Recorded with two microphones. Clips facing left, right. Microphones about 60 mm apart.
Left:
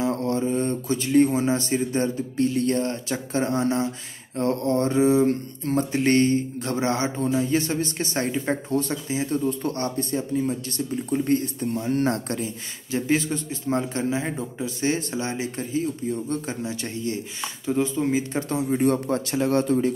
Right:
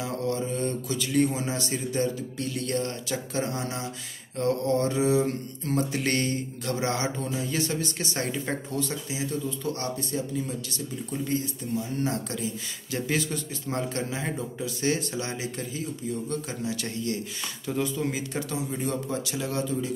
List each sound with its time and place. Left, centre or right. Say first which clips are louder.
0.0 s mantra: left 5 dB; left
11.1 s speech: left 7 dB; left
12.9 s a man's voice: left 5 dB; left
18.9 s speech: left 7 dB; left